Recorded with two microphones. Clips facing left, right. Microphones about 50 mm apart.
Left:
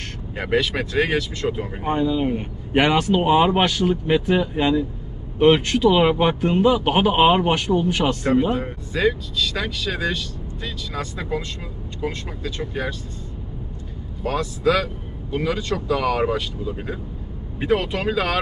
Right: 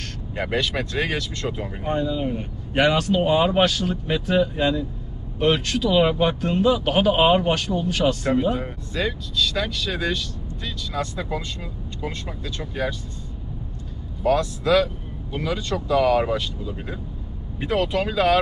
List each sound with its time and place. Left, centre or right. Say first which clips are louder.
0.4 s speech: left 3 dB; centre
2.0 s speech: left 4 dB; left
14.2 s speech: even; centre